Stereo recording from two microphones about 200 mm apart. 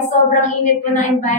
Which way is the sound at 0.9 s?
40° left (ahead or behind).